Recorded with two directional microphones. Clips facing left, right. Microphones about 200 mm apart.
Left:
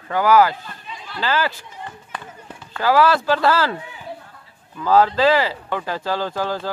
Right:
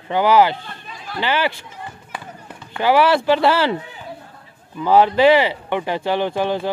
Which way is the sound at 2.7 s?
20° right (ahead or behind).